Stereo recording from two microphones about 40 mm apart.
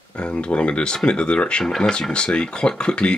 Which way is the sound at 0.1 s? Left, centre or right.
Left.